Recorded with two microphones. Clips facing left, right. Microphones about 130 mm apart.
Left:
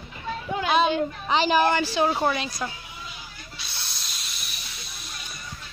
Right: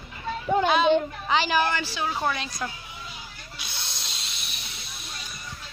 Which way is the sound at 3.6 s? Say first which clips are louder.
Right 2 dB; 20° right (ahead or behind).